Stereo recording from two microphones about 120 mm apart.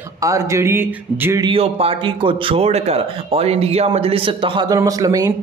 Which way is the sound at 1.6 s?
55° right (ahead or behind).